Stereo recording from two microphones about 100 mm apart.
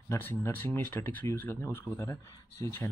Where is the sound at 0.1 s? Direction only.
25° left (ahead or behind).